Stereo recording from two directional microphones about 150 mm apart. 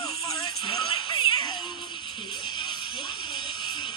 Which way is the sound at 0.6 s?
35° left (ahead or behind).